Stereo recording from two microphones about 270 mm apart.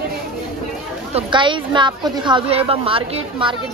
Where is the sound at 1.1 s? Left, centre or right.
Centre.